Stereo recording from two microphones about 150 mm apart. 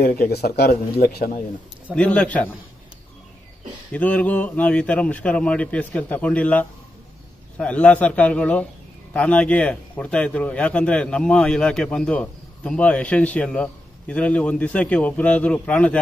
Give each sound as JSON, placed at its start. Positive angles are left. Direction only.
{"t": 0.0, "sound": "speech", "side_deg": 80}
{"t": 2.0, "sound": "a man's voice", "side_deg": 10}
{"t": 3.9, "sound": "a man's voice", "side_deg": 10}